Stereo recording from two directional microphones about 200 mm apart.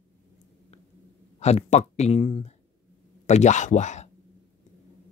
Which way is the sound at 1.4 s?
35° left (ahead or behind).